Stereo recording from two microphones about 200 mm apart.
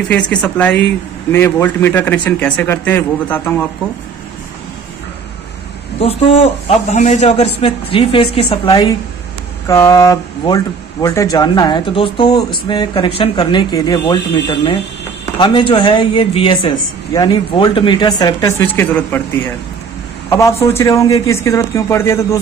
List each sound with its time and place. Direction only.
0.3 s speech: 5° left (ahead or behind)
6.9 s speech: 35° left (ahead or behind); by 19.2 s 10° left (ahead or behind)
20.2 s speech: 15° left (ahead or behind)